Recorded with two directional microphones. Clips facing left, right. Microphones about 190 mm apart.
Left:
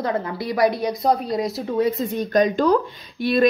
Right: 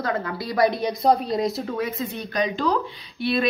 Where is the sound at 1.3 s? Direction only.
5° left (ahead or behind).